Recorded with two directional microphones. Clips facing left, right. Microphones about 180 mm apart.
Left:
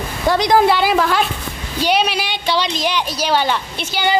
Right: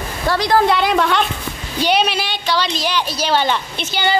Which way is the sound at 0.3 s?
15° left (ahead or behind).